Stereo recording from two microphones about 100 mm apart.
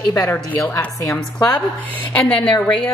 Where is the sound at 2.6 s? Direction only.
10° left (ahead or behind).